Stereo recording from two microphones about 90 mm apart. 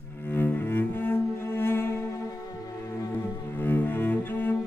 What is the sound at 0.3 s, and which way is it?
Cello, 25° left (ahead or behind).